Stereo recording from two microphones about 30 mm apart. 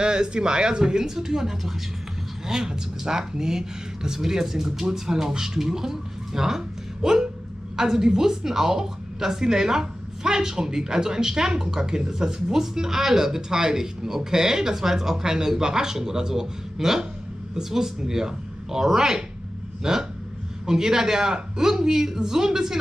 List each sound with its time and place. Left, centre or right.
0.0 s speech: right